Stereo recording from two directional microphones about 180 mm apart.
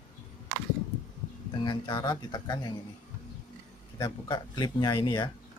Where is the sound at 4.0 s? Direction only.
20° left (ahead or behind).